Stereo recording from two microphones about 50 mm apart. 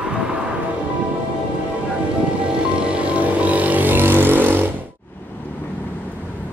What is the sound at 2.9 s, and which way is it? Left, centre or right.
Vehicle, right.